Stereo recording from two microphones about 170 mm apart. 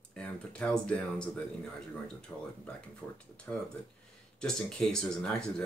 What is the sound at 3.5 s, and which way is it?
Speech, 10° left (ahead or behind).